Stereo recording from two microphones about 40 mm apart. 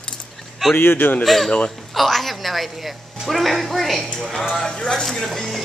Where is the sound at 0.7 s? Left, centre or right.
Left.